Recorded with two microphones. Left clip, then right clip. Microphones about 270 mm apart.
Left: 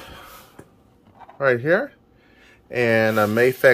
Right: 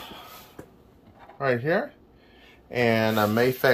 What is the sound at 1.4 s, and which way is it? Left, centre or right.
Speech, centre.